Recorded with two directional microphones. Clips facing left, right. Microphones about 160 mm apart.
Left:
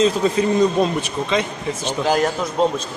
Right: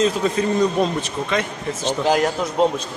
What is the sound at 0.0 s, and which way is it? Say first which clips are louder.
Speech: left 2 dB; 25° left (ahead or behind).